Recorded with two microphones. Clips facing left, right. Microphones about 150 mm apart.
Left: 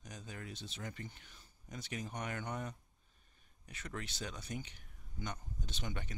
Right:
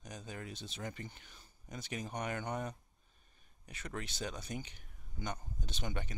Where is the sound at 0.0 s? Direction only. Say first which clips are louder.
Right 3 dB; 20° right (ahead or behind).